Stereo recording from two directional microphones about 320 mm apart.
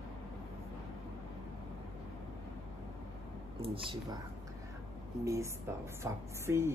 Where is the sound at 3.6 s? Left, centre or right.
Centre.